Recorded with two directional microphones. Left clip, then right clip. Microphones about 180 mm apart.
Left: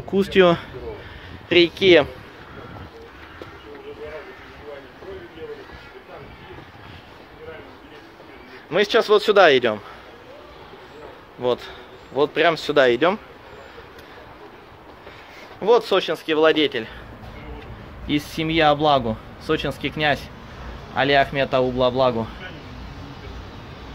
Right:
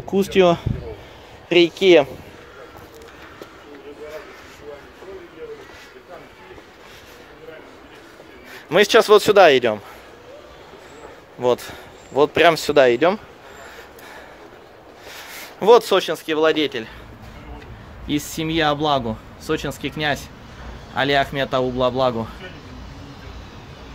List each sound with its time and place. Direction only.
0.0 s speech: 15° right (ahead or behind)
1.5 s speech: 20° right (ahead or behind)
8.6 s a man's voice: 45° right (ahead or behind)
9.3 s speech: 20° right (ahead or behind)
11.4 s speech: 25° right (ahead or behind)
12.8 s speech: 20° right (ahead or behind)
15.6 s speech: 40° right (ahead or behind)
15.9 s speech: 20° right (ahead or behind)
16.3 s speech: 5° right (ahead or behind)
18.0 s speech: 10° right (ahead or behind)